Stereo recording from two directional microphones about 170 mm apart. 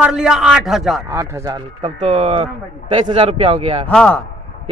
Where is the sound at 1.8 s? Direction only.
35° right (ahead or behind).